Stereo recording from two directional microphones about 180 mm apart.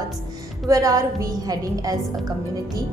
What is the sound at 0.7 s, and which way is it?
A woman's voice, 20° right (ahead or behind).